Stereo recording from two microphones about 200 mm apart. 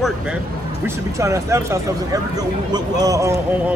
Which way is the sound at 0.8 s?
15° right (ahead or behind).